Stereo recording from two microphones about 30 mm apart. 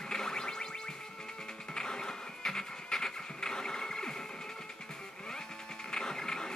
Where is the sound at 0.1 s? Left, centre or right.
Left.